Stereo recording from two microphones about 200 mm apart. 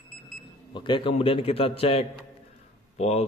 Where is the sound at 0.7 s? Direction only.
25° left (ahead or behind).